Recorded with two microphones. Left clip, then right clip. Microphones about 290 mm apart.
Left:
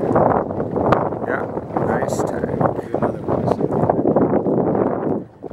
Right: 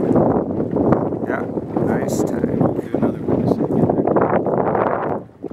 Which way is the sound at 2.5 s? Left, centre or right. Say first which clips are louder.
Even; left.